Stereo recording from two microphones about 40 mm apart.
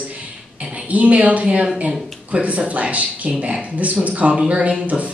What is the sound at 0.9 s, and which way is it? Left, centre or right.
Speech, right.